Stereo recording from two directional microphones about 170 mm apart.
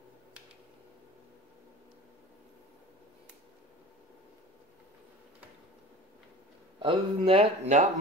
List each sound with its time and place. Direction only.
6.8 s speech: 30° right (ahead or behind)